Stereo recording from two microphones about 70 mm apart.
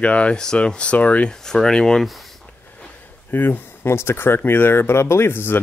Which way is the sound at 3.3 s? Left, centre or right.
Left.